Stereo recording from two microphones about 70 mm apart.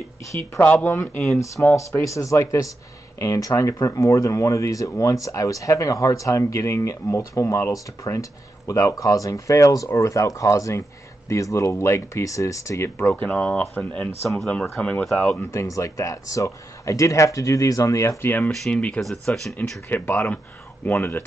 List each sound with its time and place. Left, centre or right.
0.6 s speech: left
1.1 s speech: left
7.7 s speech: left
13.0 s speech: left
15.5 s speech: left
18.2 s speech: left
18.7 s speech: centre
18.9 s speech: centre
19.9 s speech: left